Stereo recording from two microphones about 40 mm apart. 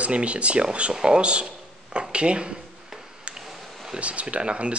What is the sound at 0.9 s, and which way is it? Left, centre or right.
Speech, centre.